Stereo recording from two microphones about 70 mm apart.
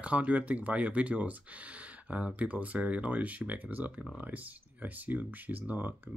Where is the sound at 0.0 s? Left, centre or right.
Centre.